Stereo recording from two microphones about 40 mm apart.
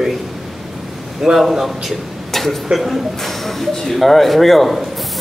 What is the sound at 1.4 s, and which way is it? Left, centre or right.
Speech, centre.